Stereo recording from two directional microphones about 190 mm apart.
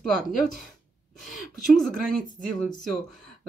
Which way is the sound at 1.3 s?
Centre (ahead or behind).